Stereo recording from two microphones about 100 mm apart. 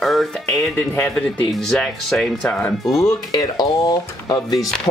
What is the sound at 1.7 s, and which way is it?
Speech, 5° left (ahead or behind).